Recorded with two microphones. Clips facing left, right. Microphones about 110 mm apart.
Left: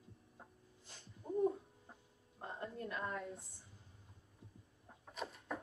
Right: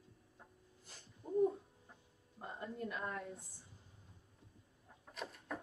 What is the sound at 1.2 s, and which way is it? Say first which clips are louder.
Music: right 2 dB; 25° left (ahead or behind).